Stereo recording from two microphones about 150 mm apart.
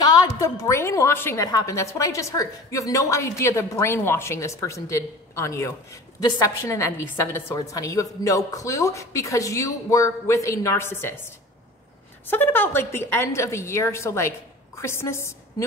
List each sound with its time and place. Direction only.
0.0 s a woman's voice: 25° left (ahead or behind)
12.3 s a woman's voice: 15° left (ahead or behind)